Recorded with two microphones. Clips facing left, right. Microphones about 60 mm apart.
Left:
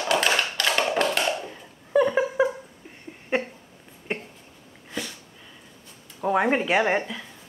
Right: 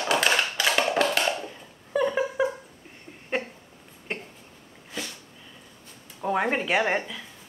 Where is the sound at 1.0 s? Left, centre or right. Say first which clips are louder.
Even; centre.